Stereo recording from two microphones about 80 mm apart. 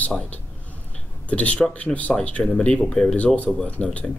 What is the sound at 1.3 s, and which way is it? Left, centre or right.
Speech, centre.